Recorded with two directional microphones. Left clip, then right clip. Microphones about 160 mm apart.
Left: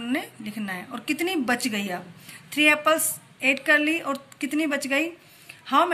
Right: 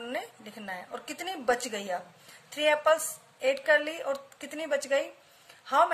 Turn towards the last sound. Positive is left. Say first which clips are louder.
# left 3 dB
turn(degrees=-50)  # may be behind; listen again after turning